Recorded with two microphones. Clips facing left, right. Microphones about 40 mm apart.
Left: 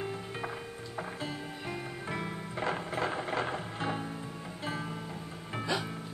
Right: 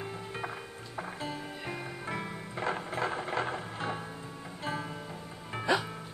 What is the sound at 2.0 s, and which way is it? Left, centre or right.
Music, centre.